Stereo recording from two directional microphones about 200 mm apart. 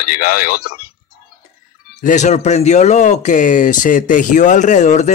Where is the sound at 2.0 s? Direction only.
35° left (ahead or behind).